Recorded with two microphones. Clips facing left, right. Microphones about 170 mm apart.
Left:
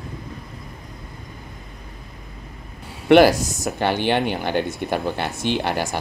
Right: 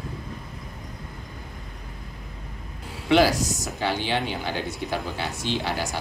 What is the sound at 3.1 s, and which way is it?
Speech, 60° left (ahead or behind).